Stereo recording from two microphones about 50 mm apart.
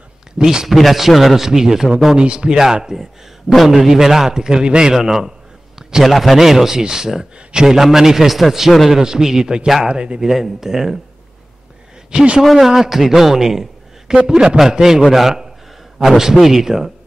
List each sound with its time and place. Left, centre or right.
0.4 s a man's voice: centre
0.7 s a man's voice: centre
5.8 s a sound: centre
6.0 s a man's voice: centre
10.3 s a man's voice: centre
12.1 s a man's voice: centre